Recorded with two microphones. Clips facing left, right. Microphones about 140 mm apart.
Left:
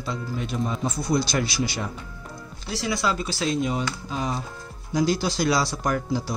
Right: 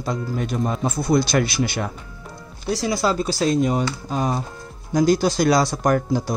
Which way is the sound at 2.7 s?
40° right (ahead or behind).